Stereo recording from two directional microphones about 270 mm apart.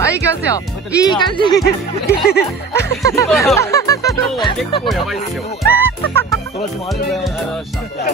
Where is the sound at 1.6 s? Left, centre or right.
Left.